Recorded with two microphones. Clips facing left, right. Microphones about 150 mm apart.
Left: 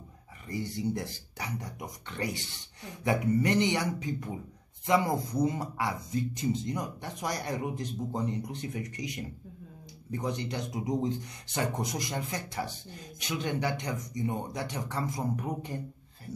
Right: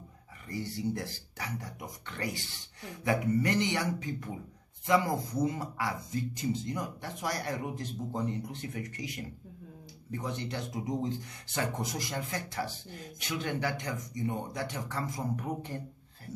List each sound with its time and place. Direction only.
0.5 s speech: 20° left (ahead or behind)